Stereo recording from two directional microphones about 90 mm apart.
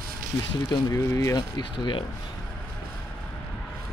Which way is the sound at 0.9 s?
40° left (ahead or behind).